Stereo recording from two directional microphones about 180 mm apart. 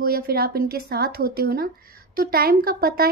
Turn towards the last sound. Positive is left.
turn(degrees=-55)  # may be behind; listen again after turning